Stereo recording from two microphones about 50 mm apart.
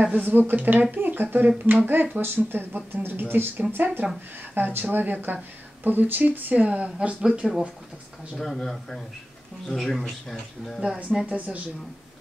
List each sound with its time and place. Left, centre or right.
0.1 s speech: right; by 7.4 s centre
8.4 s speech: centre
11.3 s speech: right